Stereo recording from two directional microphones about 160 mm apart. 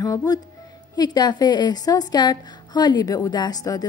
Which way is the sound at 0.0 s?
20° left (ahead or behind).